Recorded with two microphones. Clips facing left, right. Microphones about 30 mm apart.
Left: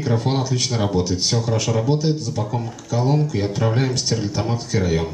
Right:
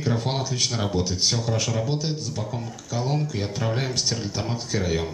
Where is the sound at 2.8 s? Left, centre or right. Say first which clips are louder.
Left 6 dB; centre.